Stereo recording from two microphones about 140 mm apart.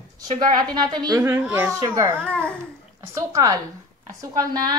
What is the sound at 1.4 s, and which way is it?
Speech, 15° right (ahead or behind).